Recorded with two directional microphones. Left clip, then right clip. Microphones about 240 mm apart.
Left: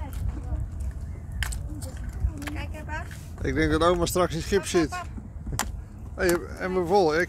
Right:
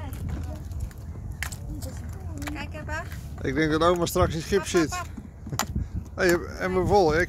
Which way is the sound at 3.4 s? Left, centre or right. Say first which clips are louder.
Even; centre.